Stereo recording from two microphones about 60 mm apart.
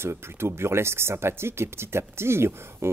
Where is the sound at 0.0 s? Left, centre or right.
Right.